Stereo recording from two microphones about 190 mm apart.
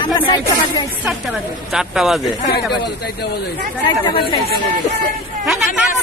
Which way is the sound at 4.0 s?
25° left (ahead or behind).